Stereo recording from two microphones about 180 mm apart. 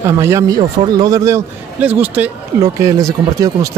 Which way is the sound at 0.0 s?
15° right (ahead or behind).